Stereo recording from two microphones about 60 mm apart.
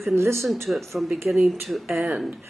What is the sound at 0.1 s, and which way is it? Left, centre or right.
Speech, right.